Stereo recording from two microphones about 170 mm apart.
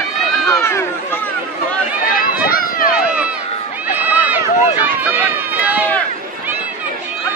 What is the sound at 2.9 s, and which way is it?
Run, 5° right (ahead or behind).